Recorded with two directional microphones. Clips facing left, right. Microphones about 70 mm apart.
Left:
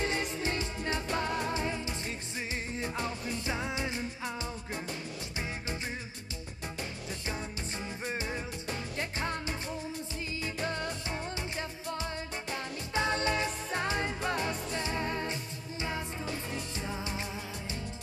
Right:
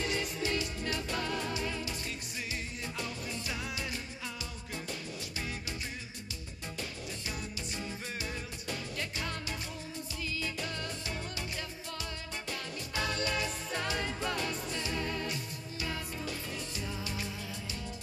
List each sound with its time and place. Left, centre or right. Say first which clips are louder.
0.0 s music: left 2 dB; left
7.8 s music: left 5 dB; left